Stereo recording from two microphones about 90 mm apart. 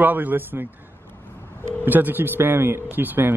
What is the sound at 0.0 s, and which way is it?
Speech, 20° right (ahead or behind).